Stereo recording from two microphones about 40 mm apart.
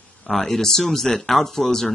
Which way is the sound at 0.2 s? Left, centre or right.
Centre.